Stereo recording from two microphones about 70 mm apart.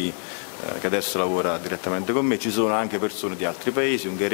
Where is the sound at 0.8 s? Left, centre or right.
Centre.